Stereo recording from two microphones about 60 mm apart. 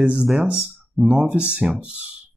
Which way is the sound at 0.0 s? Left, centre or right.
Right.